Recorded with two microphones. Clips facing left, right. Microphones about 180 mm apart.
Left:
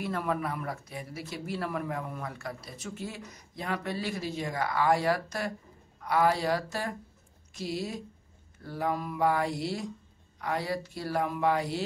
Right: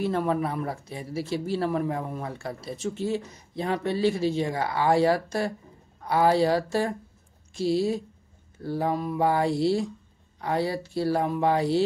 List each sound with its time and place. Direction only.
0.0 s speech: 30° right (ahead or behind)